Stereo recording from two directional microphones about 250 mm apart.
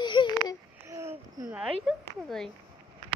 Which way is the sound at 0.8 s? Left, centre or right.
Centre.